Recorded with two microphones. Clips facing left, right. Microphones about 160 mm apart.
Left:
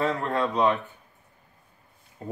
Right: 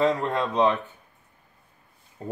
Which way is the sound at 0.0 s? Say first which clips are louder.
Right 2 dB; 15° right (ahead or behind).